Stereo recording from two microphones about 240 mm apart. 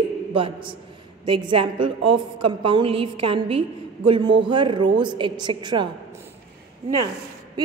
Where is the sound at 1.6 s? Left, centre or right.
Right.